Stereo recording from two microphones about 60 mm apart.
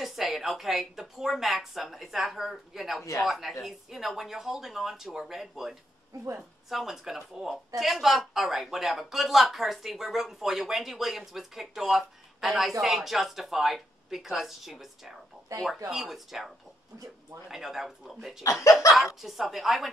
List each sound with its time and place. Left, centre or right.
0.0 s speech: centre
3.0 s speech: left
3.3 s speech: centre
15.5 s speech: right
15.9 s speech: centre
18.4 s speech: left
19.2 s speech: centre